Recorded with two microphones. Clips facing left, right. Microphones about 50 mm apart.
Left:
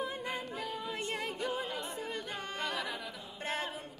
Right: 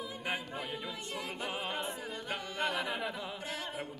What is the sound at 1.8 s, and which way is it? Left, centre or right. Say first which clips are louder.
A capella: even; right.